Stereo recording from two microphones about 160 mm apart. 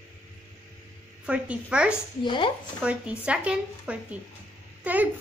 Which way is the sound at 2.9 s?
5° right (ahead or behind).